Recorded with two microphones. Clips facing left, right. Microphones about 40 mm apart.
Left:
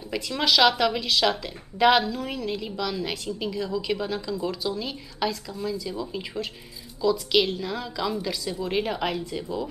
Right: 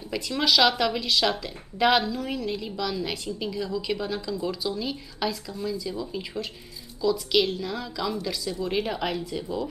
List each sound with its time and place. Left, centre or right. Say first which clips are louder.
0.1 s a woman's voice: even; centre